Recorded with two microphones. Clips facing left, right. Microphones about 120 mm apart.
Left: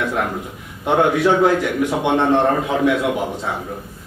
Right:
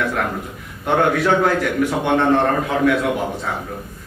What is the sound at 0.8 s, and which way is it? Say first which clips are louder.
A man's voice: left 1 dB; 15° left (ahead or behind).